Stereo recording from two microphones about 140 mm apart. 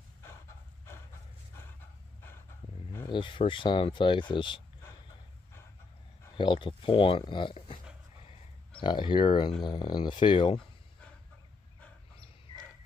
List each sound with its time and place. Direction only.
3.1 s speech: 35° left (ahead or behind)
6.3 s speech: 35° left (ahead or behind)
8.8 s speech: 35° left (ahead or behind)
12.5 s a sound: 35° left (ahead or behind)